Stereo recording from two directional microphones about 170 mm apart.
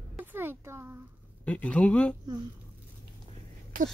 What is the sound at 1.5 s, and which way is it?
Speech, 10° left (ahead or behind).